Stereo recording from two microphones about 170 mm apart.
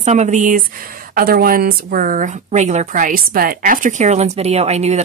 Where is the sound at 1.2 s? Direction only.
60° right (ahead or behind).